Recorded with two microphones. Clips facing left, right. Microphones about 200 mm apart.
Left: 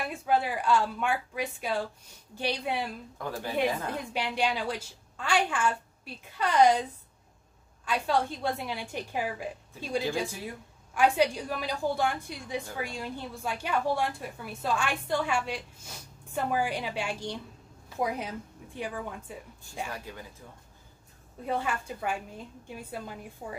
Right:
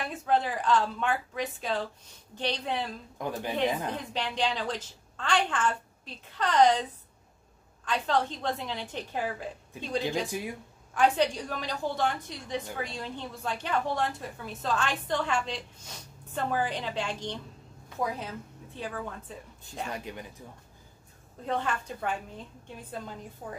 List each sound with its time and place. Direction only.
0.0 s a woman's voice: 10° left (ahead or behind)
3.2 s speech: 20° right (ahead or behind)
4.1 s a woman's voice: 10° left (ahead or behind)
19.9 s speech: 20° right (ahead or behind)
21.5 s a woman's voice: 5° left (ahead or behind)